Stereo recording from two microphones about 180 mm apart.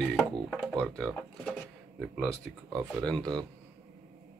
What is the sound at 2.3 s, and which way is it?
Speech, 15° right (ahead or behind).